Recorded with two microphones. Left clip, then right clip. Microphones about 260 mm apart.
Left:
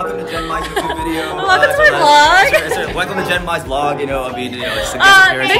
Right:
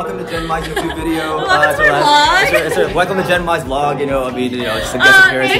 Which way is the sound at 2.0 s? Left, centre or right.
Left.